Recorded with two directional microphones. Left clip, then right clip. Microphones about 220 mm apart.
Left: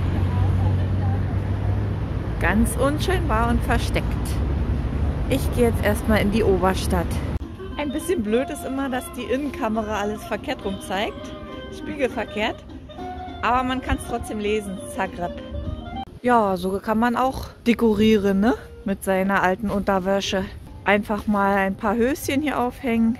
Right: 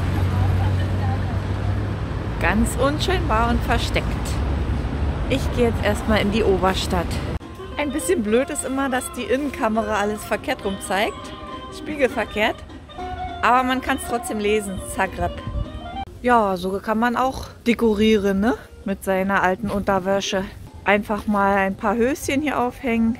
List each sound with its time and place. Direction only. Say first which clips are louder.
2.4 s speech: right 1 dB; centre (ahead or behind)
7.7 s speech: right 3 dB; 10° right (ahead or behind)
16.3 s speech: right 1 dB; 5° left (ahead or behind)